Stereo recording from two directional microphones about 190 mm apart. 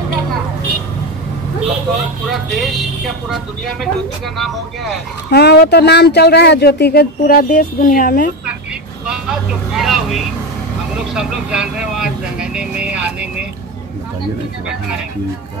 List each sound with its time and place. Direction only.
2.2 s speech: centre (ahead or behind)
5.3 s speech: 60° left (ahead or behind)
9.0 s vehicle: 5° right (ahead or behind)
11.0 s speech: 5° right (ahead or behind)